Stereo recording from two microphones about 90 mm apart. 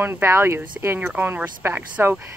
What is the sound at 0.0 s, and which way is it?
Speech, 25° right (ahead or behind).